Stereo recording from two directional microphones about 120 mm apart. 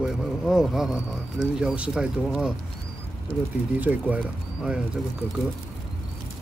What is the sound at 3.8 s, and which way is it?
Speech, 15° right (ahead or behind).